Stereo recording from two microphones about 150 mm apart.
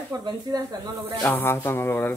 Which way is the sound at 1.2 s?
15° left (ahead or behind).